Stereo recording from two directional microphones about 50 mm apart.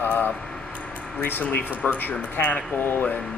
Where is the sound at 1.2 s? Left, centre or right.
Left.